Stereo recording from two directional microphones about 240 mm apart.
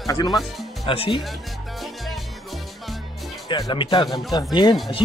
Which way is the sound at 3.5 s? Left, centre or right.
Centre.